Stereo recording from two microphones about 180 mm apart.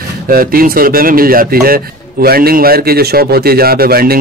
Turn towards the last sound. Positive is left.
turn(degrees=-55)  # may be behind; listen again after turning